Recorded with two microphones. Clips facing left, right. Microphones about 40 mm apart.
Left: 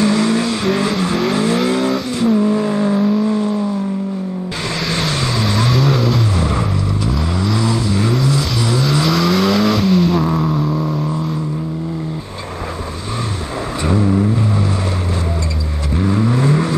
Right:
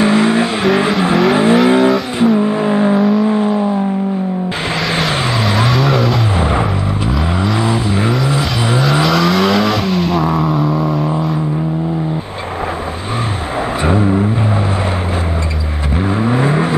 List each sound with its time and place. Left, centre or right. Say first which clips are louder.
0.0 s vehicle: right 3 dB; right
4.9 s vehicle: right 2 dB; right
5.7 s vehicle: right 2 dB; centre
7.3 s vehicle: right 2 dB; right
9.0 s vehicle: right 2 dB; centre
13.8 s vehicle: right 1 dB; right
16.0 s vehicle: right 1 dB; right